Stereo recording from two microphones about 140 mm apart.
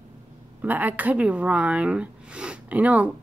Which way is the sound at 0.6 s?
10° right (ahead or behind).